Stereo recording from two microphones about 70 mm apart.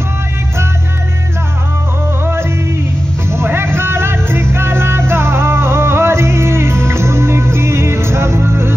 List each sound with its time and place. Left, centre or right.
3.3 s music: right